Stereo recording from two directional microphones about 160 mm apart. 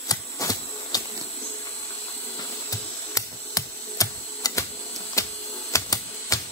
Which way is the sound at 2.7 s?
20° left (ahead or behind).